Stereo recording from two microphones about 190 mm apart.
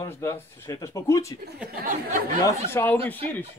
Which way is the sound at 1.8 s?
50° right (ahead or behind).